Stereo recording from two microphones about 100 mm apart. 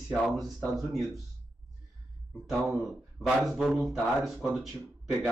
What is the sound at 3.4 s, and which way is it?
Speech, centre (ahead or behind).